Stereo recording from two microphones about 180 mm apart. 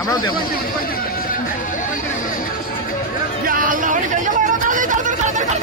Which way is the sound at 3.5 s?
50° right (ahead or behind).